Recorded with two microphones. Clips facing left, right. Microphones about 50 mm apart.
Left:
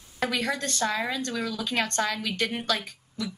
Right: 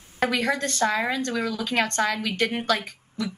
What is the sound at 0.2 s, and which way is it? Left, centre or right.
A woman's voice, right.